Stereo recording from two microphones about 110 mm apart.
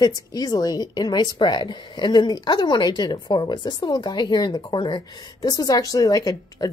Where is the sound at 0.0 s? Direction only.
35° left (ahead or behind).